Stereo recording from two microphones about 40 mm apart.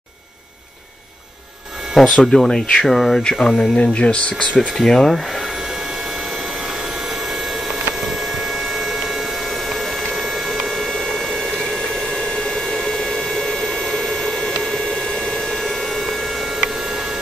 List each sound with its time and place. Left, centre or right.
2.0 s speech: centre
3.2 s speech: centre
3.7 s speech: left
4.6 s speech: centre
5.4 s a sound: centre